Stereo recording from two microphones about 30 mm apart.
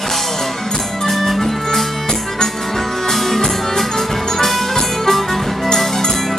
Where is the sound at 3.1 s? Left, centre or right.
Centre.